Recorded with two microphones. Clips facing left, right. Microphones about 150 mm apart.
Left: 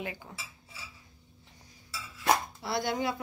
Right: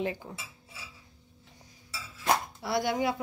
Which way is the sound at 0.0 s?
30° right (ahead or behind).